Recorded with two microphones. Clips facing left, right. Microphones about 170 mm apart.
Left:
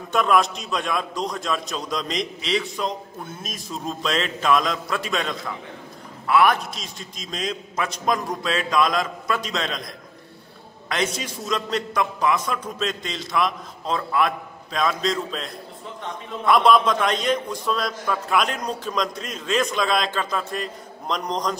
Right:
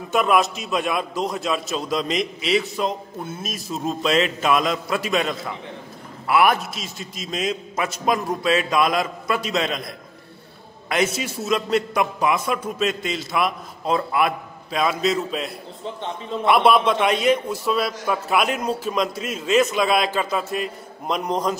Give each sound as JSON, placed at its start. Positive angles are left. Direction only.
{"t": 0.1, "sound": "a man's voice", "side_deg": -5}